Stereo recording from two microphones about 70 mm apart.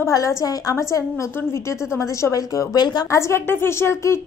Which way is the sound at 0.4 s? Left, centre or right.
Left.